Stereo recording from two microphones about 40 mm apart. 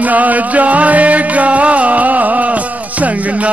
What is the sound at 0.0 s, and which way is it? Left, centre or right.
Music, right.